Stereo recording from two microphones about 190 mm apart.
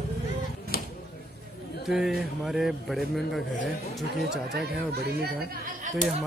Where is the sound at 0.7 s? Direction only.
55° left (ahead or behind).